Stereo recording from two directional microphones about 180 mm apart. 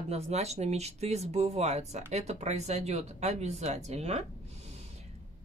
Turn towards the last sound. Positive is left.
turn(degrees=-35)  # may be behind; listen again after turning